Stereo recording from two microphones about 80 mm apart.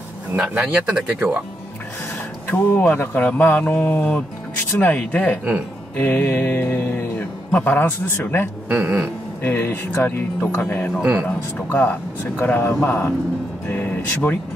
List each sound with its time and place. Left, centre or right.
0.4 s speech: centre
2.5 s mantra: left
8.6 s speech: right
9.4 s mantra: left